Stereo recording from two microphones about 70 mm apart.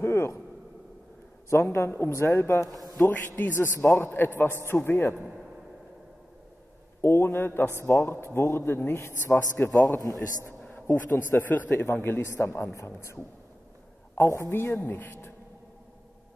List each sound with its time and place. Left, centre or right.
0.0 s speech: left
1.5 s a man's voice: left
4.4 s a man's voice: left
7.0 s a man's voice: left
9.8 s a man's voice: left
10.7 s a man's voice: left
14.5 s a man's voice: left